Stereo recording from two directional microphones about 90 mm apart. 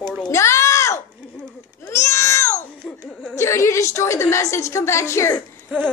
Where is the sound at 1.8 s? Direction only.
35° left (ahead or behind).